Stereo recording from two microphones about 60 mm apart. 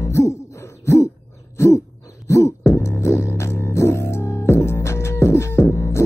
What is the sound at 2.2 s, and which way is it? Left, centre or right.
Music, left.